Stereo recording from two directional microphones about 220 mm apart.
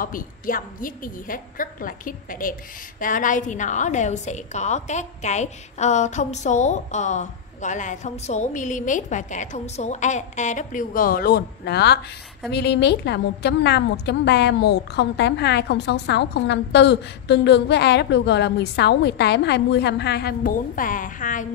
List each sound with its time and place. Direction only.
0.0 s a woman's voice: 40° left (ahead or behind)